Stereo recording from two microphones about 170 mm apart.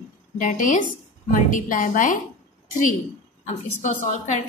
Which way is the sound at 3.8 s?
50° left (ahead or behind).